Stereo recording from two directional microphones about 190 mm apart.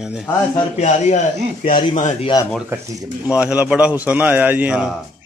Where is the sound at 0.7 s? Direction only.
40° left (ahead or behind).